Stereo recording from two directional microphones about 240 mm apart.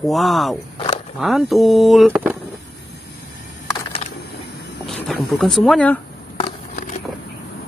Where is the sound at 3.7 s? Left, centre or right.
Centre.